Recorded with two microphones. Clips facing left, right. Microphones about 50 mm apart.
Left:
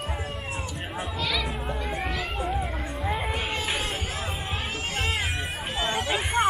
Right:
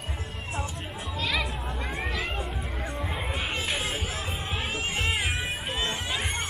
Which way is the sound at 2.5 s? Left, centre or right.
Centre.